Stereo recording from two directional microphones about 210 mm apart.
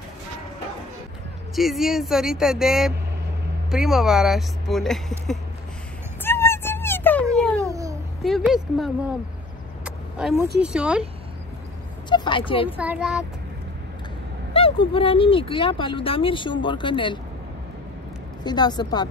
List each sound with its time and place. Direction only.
1.5 s speech: centre (ahead or behind)
6.2 s a sound: 10° left (ahead or behind)
7.3 s babbling: 5° left (ahead or behind)
7.6 s babbling: 15° right (ahead or behind)
8.2 s speech: centre (ahead or behind)
9.8 s vehicle: 5° right (ahead or behind)
10.6 s speech: 5° right (ahead or behind)
12.1 s speech: 25° left (ahead or behind)
12.7 s speech: 5° right (ahead or behind)
14.5 s speech: 25° left (ahead or behind)
18.4 s speech: 20° left (ahead or behind)